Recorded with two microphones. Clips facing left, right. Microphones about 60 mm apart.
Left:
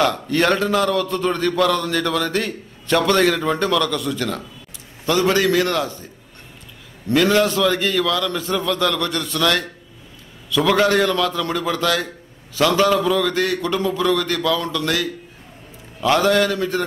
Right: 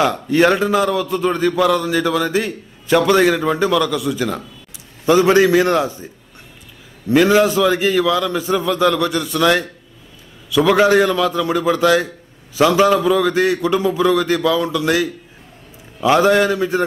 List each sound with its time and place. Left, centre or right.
0.0 s a man's voice: centre
5.0 s a man's voice: centre
7.1 s a man's voice: centre